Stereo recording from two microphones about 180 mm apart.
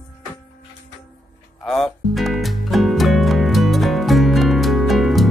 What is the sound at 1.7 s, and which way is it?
Music, centre (ahead or behind).